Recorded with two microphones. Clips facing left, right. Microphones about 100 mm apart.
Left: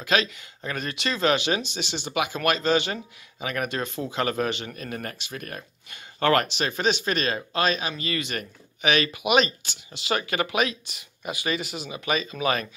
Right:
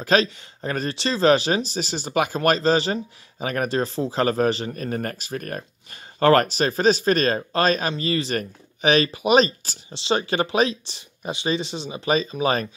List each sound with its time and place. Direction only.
0.0 s speech: 35° right (ahead or behind)